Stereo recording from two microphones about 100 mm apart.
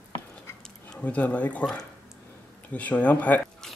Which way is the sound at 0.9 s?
15° left (ahead or behind).